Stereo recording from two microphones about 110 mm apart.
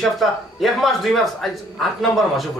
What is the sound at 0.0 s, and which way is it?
Speech, centre (ahead or behind).